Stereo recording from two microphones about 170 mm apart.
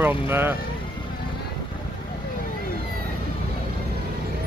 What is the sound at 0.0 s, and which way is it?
Speech, 15° right (ahead or behind).